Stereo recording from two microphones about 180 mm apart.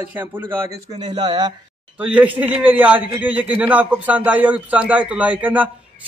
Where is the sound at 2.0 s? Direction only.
10° right (ahead or behind).